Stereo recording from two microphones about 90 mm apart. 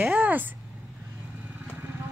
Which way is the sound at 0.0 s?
15° right (ahead or behind).